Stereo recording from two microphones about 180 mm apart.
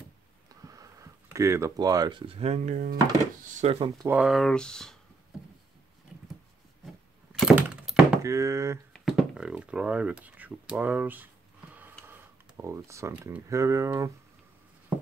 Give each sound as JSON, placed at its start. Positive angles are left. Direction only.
{"t": 0.5, "sound": "speech", "side_deg": -20}
{"t": 3.6, "sound": "speech", "side_deg": -35}
{"t": 4.1, "sound": "speech", "side_deg": -5}
{"t": 7.3, "sound": "door", "side_deg": -5}
{"t": 8.2, "sound": "speech", "side_deg": -15}
{"t": 8.9, "sound": "a sound", "side_deg": 0}
{"t": 12.1, "sound": "speech", "side_deg": -15}